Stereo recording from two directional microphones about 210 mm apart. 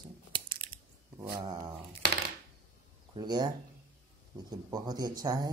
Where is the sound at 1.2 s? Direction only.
20° right (ahead or behind).